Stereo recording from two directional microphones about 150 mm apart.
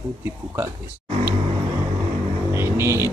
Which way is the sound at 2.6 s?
20° right (ahead or behind).